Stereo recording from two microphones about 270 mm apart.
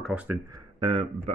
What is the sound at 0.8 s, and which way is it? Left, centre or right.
Speech, centre.